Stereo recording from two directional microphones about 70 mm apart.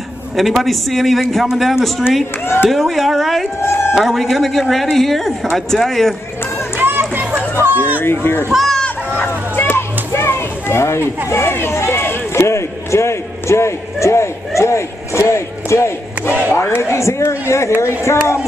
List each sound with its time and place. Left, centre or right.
0.4 s a man's voice: centre
3.6 s a sound: left
3.9 s a man's voice: centre
6.8 s run: right
7.5 s chatter: right
8.0 s speech: left
8.5 s a man's voice: centre
8.7 s a sound: centre
9.6 s children playing: left
11.2 s run: left
16.3 s speech: right
16.8 s speech: left